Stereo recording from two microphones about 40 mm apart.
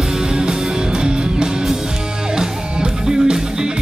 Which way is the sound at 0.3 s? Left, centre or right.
Centre.